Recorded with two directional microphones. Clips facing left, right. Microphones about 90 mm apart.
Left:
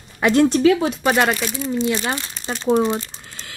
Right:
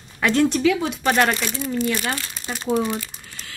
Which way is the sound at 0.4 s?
35° left (ahead or behind).